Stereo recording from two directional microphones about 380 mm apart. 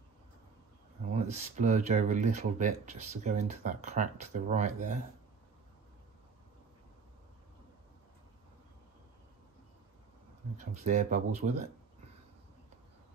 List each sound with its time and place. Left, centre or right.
1.1 s speech: centre
10.6 s speech: centre